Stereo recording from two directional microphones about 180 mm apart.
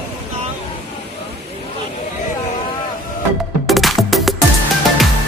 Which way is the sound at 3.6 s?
Centre (ahead or behind).